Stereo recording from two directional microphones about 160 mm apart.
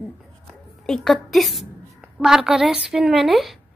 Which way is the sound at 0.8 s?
Centre (ahead or behind).